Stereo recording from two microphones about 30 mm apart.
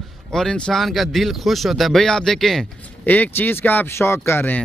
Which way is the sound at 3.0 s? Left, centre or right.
Left.